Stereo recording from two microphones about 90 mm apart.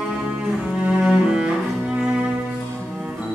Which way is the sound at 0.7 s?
10° right (ahead or behind).